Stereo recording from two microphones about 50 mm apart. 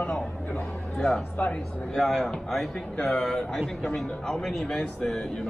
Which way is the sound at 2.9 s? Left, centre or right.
Centre.